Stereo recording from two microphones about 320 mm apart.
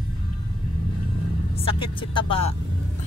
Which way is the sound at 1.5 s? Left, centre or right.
Centre.